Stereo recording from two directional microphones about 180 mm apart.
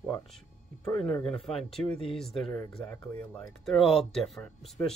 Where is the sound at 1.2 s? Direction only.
Centre (ahead or behind).